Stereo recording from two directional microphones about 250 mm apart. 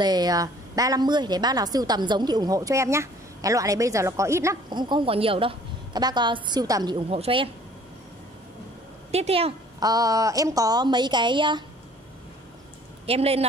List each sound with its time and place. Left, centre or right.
0.0 s a woman's voice: centre
9.1 s a woman's voice: right
13.0 s speech: right